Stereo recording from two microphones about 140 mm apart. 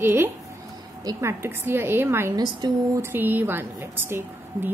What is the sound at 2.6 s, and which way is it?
Speech, 30° right (ahead or behind).